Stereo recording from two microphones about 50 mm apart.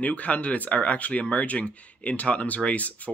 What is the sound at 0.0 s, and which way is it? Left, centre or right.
Speech, left.